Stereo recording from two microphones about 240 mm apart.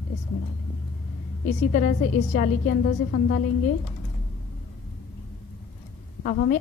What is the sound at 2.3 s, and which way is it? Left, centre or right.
A woman's voice, left.